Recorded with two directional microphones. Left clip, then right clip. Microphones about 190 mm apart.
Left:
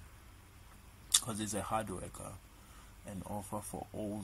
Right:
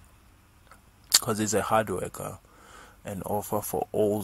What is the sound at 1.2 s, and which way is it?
Speech, 45° right (ahead or behind).